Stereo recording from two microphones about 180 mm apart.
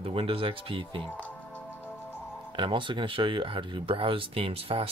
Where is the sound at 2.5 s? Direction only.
25° right (ahead or behind).